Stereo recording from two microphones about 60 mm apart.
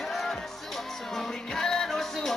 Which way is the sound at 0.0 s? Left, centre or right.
Centre.